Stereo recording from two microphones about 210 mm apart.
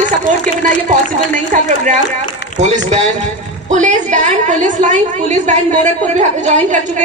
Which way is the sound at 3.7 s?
35° right (ahead or behind).